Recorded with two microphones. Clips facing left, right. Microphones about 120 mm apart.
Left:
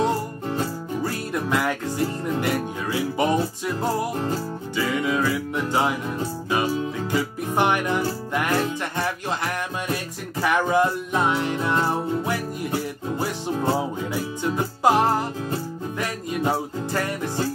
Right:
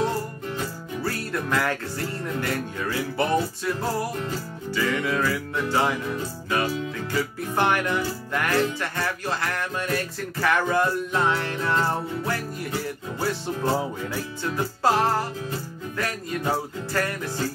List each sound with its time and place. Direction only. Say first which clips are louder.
1.0 s music: even; 15° left (ahead or behind)